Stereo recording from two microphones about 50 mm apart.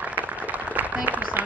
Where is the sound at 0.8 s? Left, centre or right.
Right.